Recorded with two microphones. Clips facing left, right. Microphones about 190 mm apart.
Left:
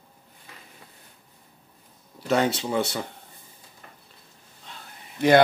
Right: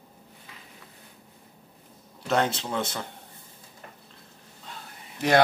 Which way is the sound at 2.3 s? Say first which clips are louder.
Left 3 dB; 10° left (ahead or behind).